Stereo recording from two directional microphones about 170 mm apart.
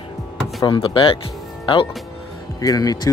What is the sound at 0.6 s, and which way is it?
Speech, 30° left (ahead or behind).